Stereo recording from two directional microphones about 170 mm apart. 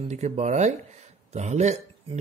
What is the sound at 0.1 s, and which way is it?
Speech, 40° right (ahead or behind).